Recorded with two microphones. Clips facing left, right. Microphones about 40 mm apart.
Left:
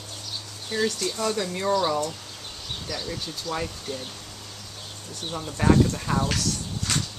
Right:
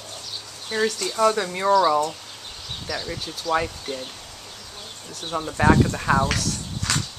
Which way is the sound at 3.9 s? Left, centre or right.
Right.